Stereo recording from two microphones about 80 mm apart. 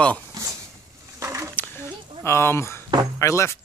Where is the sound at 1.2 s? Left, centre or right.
Right.